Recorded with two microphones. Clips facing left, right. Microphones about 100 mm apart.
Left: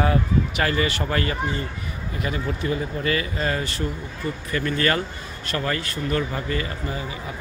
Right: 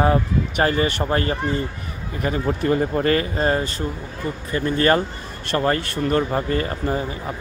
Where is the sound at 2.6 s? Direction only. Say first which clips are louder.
Right 7 dB; 50° right (ahead or behind); by 3.6 s 35° right (ahead or behind).